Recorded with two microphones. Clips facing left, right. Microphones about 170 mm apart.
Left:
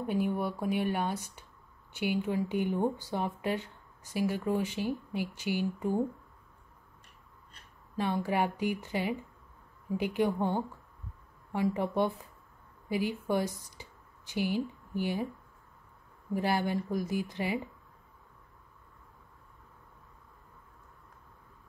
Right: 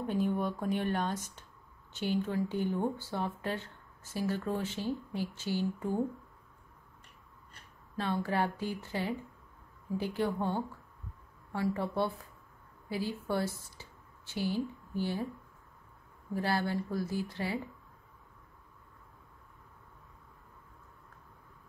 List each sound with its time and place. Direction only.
0.0 s speech: 15° left (ahead or behind)
8.0 s a woman's voice: 15° left (ahead or behind)
16.3 s speech: 15° left (ahead or behind)